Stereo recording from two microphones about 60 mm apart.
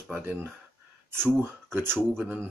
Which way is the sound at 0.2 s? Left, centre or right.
Right.